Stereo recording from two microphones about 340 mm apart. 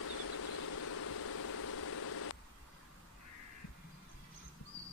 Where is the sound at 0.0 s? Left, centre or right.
Left.